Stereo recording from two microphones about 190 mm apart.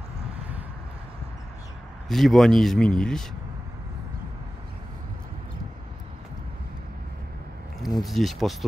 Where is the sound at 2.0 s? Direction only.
Centre (ahead or behind).